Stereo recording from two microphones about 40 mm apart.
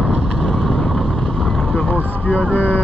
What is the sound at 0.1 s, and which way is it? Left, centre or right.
Vehicle, centre.